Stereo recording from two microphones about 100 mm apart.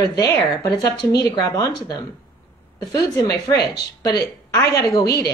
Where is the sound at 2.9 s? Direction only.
35° left (ahead or behind).